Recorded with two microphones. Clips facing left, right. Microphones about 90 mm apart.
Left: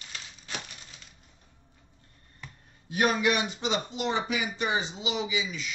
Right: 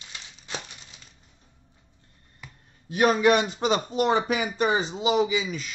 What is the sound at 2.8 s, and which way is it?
Speech, 35° right (ahead or behind).